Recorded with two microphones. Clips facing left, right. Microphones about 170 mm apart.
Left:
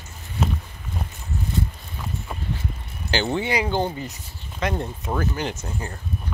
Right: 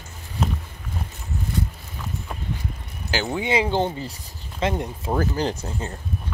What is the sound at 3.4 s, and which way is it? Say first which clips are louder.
Speech: right 2 dB; 25° right (ahead or behind).